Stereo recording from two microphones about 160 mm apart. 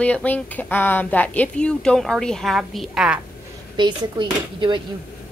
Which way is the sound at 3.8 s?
30° right (ahead or behind).